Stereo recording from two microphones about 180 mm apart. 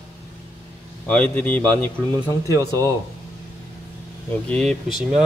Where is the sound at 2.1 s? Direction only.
20° right (ahead or behind).